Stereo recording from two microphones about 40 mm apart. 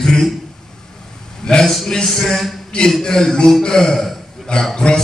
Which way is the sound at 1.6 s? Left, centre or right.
Centre.